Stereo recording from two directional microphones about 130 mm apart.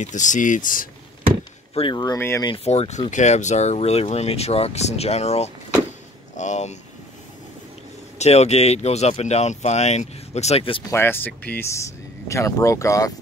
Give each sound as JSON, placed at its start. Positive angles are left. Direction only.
{"t": 0.0, "sound": "speech", "side_deg": 70}
{"t": 1.7, "sound": "speech", "side_deg": 45}
{"t": 2.1, "sound": "speech", "side_deg": 20}
{"t": 2.4, "sound": "speech", "side_deg": 50}
{"t": 3.1, "sound": "speech", "side_deg": 65}
{"t": 6.3, "sound": "speech", "side_deg": 65}
{"t": 8.2, "sound": "speech", "side_deg": 55}
{"t": 10.9, "sound": "speech", "side_deg": 15}